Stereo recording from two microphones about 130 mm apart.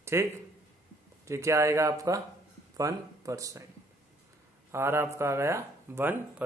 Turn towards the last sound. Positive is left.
turn(degrees=-15)  # may be behind; listen again after turning